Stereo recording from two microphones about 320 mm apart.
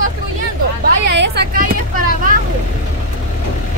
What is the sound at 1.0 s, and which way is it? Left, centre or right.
Speech, right.